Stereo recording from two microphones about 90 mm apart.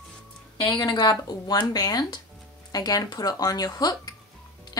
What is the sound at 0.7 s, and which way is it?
Speech, 60° left (ahead or behind).